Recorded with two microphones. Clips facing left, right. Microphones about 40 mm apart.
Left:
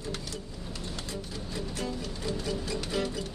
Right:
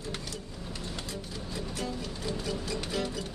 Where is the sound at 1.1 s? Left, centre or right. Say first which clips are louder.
Left 1 dB; centre.